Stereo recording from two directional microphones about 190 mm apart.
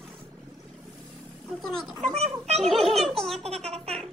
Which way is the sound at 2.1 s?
35° right (ahead or behind).